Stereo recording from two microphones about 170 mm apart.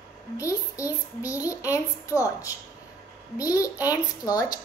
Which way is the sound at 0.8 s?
20° left (ahead or behind).